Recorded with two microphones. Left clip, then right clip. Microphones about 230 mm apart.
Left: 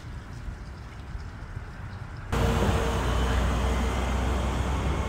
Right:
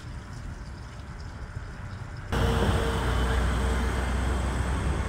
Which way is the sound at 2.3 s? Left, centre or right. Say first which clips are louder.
Even; left.